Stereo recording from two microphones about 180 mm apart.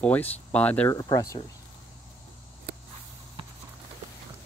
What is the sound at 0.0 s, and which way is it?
Speech, 10° left (ahead or behind).